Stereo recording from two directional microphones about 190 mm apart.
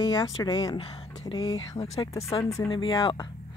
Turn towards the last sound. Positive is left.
turn(degrees=20)  # may be behind; listen again after turning